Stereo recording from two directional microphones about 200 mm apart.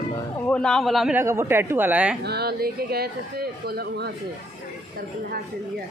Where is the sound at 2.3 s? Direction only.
50° right (ahead or behind).